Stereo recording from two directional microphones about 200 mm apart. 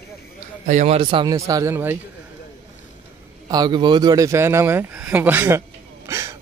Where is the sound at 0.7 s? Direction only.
35° right (ahead or behind).